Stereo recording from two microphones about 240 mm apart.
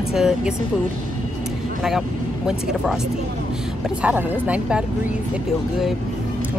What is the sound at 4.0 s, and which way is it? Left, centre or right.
Speech, centre.